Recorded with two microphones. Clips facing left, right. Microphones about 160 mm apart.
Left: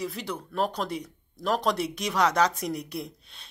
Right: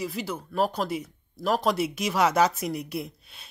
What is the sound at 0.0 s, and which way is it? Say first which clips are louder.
Speech: right 1 dB; 5° right (ahead or behind).